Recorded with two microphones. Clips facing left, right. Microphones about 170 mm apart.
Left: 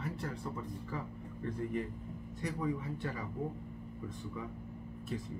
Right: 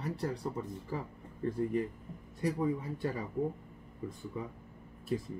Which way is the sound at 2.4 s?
30° right (ahead or behind).